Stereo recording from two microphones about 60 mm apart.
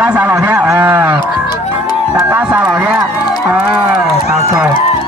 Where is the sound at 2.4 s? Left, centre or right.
Right.